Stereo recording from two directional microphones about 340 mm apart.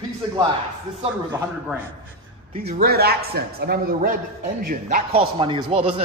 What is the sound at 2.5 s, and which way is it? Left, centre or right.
A woman's voice, centre.